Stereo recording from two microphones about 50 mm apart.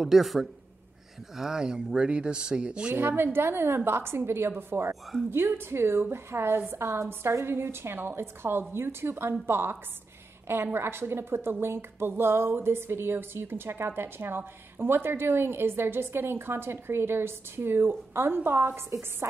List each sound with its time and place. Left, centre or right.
0.0 s speech: centre
2.9 s a woman's voice: right
18.9 s a woman's voice: right